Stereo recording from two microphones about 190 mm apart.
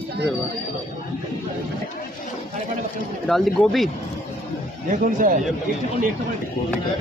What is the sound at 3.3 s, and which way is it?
Speech, centre (ahead or behind).